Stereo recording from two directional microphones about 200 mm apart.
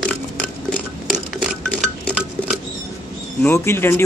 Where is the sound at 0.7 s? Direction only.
5° left (ahead or behind).